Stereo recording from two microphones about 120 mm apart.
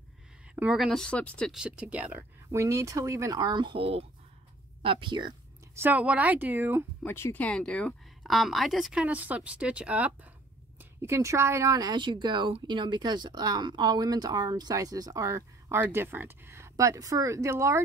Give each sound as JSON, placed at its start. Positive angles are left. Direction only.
{"t": 0.6, "sound": "speech", "side_deg": -5}
{"t": 1.5, "sound": "speech", "side_deg": -5}
{"t": 2.5, "sound": "speech", "side_deg": -25}
{"t": 4.8, "sound": "speech", "side_deg": -40}
{"t": 5.8, "sound": "speech", "side_deg": -10}
{"t": 7.1, "sound": "speech", "side_deg": 20}
{"t": 7.4, "sound": "speech", "side_deg": 10}
{"t": 10.8, "sound": "speech", "side_deg": -20}